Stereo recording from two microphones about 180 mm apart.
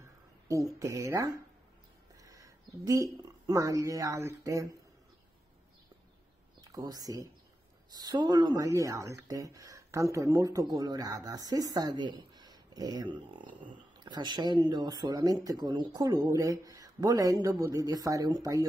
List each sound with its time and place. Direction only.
0.5 s speech: 15° right (ahead or behind)
6.6 s speech: 20° right (ahead or behind)